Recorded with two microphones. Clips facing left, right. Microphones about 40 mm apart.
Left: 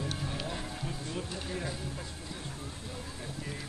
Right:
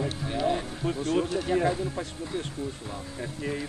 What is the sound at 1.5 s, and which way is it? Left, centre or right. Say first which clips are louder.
Speech: right 14 dB; right.